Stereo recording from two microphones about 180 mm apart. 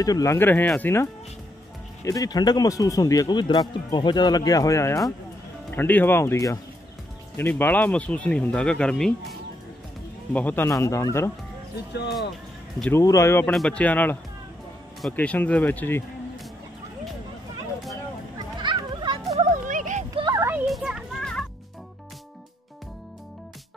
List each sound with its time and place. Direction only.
0.0 s speech: 20° left (ahead or behind)
12.9 s speech: 15° left (ahead or behind)
13.5 s speech: 5° left (ahead or behind)
18.6 s children playing: 25° right (ahead or behind)
19.5 s a sound: 45° right (ahead or behind)
20.2 s a sound: 15° right (ahead or behind)
20.7 s children playing: centre (ahead or behind)